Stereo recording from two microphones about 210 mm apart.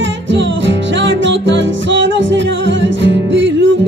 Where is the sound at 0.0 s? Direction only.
60° right (ahead or behind).